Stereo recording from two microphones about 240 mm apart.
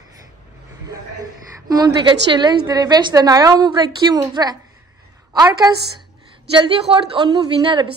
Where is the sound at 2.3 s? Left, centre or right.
Centre.